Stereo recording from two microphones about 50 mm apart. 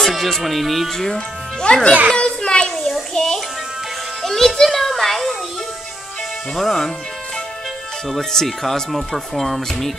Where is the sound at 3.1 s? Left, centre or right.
Centre.